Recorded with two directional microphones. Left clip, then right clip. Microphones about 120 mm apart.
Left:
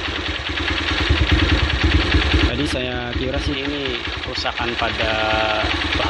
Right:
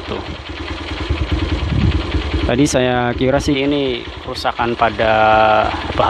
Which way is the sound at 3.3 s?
65° right (ahead or behind).